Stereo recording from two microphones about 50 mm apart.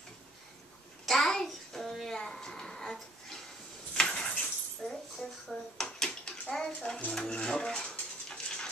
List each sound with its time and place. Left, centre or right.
1.0 s child singing: centre
2.1 s a sound: centre
5.5 s dishes: centre
6.5 s bathtub: centre
7.1 s dishes: centre
7.9 s dog: centre